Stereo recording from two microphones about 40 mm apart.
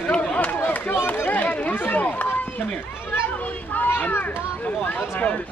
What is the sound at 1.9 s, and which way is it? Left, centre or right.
Run, left.